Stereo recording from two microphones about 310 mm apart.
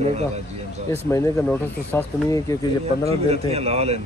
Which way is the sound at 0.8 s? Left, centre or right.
Centre.